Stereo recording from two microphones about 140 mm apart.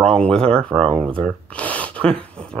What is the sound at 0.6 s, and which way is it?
Speech, 40° right (ahead or behind).